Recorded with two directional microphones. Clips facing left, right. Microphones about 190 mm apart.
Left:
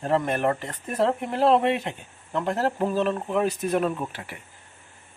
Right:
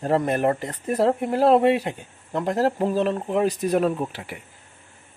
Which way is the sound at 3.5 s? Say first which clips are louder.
Right 3 dB; 35° right (ahead or behind).